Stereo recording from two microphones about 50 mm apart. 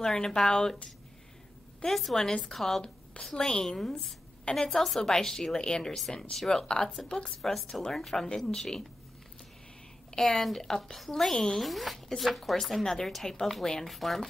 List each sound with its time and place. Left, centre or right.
0.0 s a woman's voice: centre
1.8 s a woman's voice: centre
5.9 s a woman's voice: centre
10.1 s speech: centre